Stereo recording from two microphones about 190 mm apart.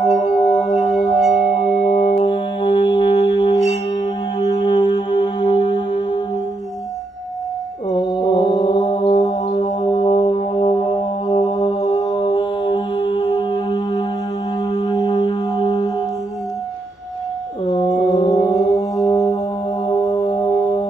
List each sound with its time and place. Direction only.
0.0 s music: centre (ahead or behind)
1.6 s music: 30° left (ahead or behind)
8.2 s mantra: 20° left (ahead or behind)
11.8 s mantra: 30° left (ahead or behind)
14.8 s music: 20° left (ahead or behind)
17.8 s mantra: 20° left (ahead or behind)
18.6 s singing bowl: centre (ahead or behind)
19.0 s music: 15° left (ahead or behind)